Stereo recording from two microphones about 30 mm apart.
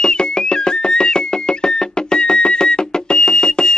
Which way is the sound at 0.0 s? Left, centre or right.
Left.